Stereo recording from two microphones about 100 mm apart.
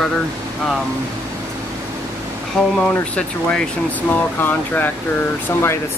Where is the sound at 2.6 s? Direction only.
5° left (ahead or behind).